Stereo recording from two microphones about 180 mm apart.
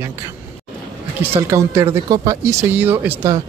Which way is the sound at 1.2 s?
10° right (ahead or behind).